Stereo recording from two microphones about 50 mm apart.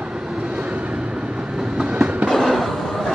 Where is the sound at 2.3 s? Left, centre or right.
Centre.